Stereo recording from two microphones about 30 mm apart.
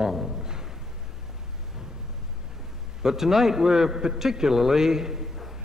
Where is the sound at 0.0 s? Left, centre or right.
Centre.